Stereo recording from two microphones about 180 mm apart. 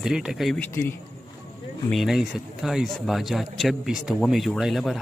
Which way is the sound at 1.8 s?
Centre (ahead or behind).